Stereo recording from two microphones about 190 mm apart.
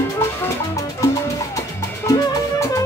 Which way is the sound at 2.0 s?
15° left (ahead or behind).